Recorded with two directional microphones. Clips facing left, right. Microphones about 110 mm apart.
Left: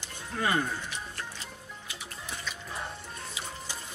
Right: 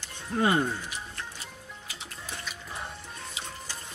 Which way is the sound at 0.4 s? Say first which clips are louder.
Right 4 dB; 25° right (ahead or behind).